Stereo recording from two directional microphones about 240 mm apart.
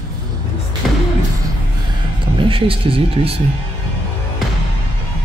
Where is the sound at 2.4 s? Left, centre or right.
Right.